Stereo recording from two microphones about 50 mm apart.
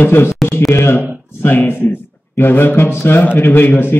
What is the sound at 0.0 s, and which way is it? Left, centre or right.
Speech, left.